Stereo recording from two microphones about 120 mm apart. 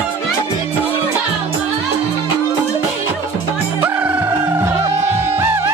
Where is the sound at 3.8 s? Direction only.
20° right (ahead or behind).